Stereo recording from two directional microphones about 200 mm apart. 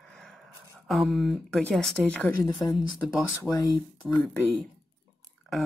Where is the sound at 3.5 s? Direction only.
5° left (ahead or behind).